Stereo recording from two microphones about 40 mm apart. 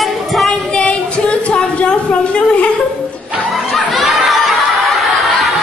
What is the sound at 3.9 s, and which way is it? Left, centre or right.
Chatter, centre.